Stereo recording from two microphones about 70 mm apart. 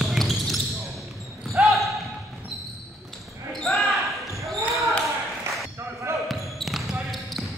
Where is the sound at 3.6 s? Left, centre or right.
Centre.